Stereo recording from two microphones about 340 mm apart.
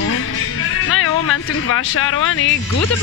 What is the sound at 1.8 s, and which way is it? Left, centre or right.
Speech, left.